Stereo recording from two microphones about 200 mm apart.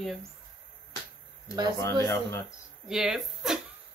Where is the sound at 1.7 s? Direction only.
15° left (ahead or behind).